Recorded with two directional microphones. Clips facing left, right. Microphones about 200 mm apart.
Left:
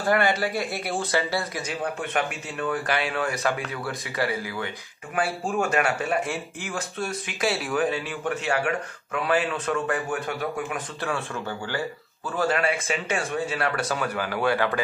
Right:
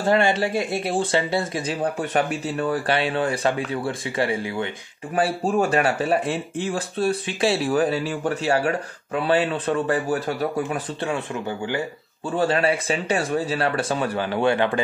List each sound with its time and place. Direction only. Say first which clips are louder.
0.0 s speech: right 3 dB; 25° right (ahead or behind)
11.1 s speech: right 2 dB; 20° right (ahead or behind)
12.3 s speech: right 4 dB; 30° right (ahead or behind)